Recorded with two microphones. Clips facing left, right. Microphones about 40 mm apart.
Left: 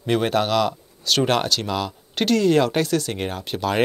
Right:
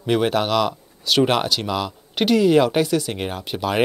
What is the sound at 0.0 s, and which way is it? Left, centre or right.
Speech, centre.